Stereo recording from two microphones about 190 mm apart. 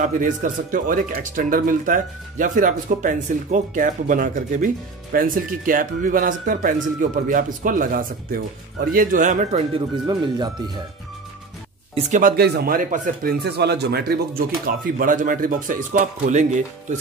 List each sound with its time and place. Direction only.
0.0 s a man's voice: 45° right (ahead or behind)
9.8 s speech: 20° right (ahead or behind)
11.9 s speech: 40° right (ahead or behind)